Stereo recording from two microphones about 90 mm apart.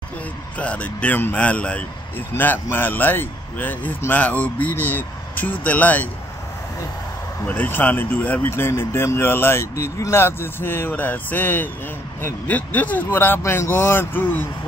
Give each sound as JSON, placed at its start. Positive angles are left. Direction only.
{"t": 0.6, "sound": "speech", "side_deg": 15}
{"t": 7.4, "sound": "speech", "side_deg": 20}